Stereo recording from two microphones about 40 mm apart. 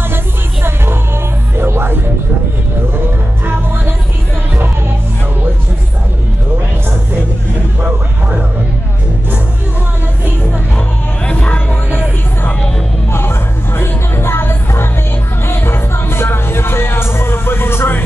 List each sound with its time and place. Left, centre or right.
1.6 s music: right
11.2 s a sound: left
13.1 s music: left
15.4 s music: left